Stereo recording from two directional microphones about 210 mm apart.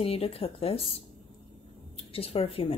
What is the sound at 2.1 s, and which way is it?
Speech, 25° left (ahead or behind).